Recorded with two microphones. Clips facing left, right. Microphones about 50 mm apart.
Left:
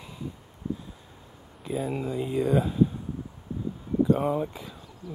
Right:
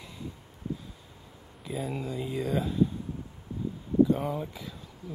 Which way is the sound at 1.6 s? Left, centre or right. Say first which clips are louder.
Left 4 dB; centre.